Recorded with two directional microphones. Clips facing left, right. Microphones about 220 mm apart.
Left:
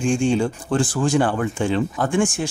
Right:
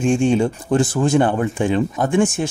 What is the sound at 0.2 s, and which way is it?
Speech, 20° right (ahead or behind).